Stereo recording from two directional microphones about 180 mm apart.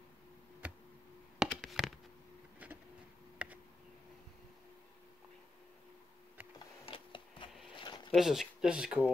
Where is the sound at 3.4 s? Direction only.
5° right (ahead or behind).